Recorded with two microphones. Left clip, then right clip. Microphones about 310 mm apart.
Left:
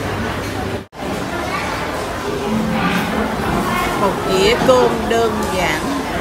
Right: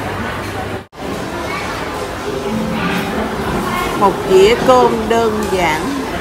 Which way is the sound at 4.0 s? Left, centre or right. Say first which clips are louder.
Right 7 dB; centre.